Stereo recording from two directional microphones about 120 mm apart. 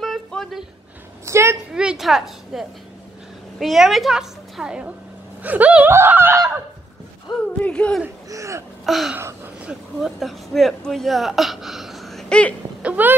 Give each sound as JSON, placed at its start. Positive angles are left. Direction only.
{"t": 0.0, "sound": "a sound", "side_deg": 0}
{"t": 1.2, "sound": "a woman's voice", "side_deg": -25}
{"t": 1.7, "sound": "a woman's voice", "side_deg": -5}
{"t": 7.6, "sound": "speech", "side_deg": 10}
{"t": 8.3, "sound": "speech", "side_deg": -25}
{"t": 8.8, "sound": "a sound", "side_deg": 0}
{"t": 9.7, "sound": "speech", "side_deg": 0}
{"t": 12.8, "sound": "a woman's voice", "side_deg": -15}